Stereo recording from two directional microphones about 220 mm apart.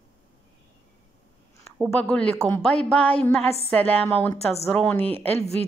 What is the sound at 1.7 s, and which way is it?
A woman's voice, centre (ahead or behind).